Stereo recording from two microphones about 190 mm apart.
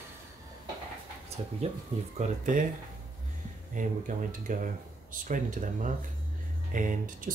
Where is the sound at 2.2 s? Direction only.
40° right (ahead or behind).